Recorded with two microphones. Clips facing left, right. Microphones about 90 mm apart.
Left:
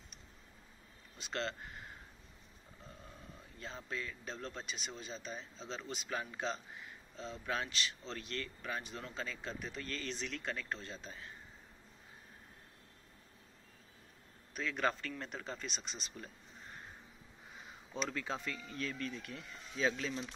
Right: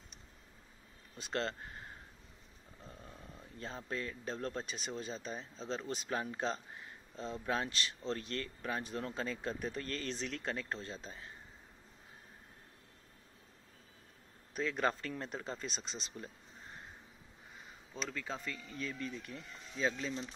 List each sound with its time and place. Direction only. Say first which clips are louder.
1.2 s speech: right 2 dB; 35° right (ahead or behind)
3.5 s speech: right 2 dB; 35° right (ahead or behind)
14.5 s speech: right 2 dB; 30° right (ahead or behind)
17.9 s speech: left 2 dB; 5° left (ahead or behind)
18.4 s speech: left 1 dB; 10° right (ahead or behind)